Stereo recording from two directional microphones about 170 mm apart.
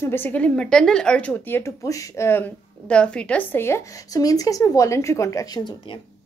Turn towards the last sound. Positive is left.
turn(degrees=20)  # may be behind; listen again after turning